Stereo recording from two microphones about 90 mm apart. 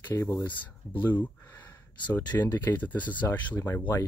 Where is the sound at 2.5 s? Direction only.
25° left (ahead or behind).